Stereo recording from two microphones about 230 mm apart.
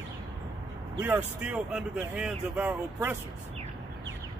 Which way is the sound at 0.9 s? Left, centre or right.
Centre.